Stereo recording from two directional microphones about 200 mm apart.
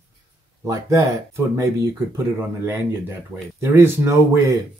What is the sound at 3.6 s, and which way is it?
Speech, 15° right (ahead or behind).